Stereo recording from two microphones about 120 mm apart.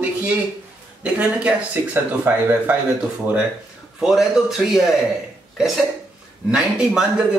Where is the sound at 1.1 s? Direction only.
10° right (ahead or behind).